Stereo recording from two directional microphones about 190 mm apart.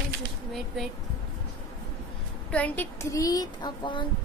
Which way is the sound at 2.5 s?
10° left (ahead or behind).